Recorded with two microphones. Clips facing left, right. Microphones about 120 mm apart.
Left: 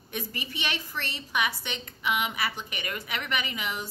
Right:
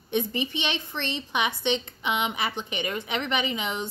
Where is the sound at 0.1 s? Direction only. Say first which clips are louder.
Right 9 dB; 25° right (ahead or behind).